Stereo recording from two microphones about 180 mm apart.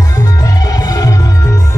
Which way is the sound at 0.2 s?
20° left (ahead or behind).